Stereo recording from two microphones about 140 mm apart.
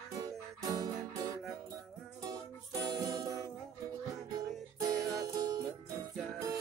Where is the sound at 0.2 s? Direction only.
25° right (ahead or behind).